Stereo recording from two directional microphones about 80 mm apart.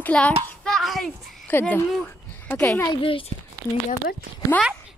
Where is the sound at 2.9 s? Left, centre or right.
Left.